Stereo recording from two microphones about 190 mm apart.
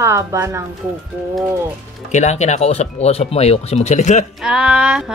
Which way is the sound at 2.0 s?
35° left (ahead or behind).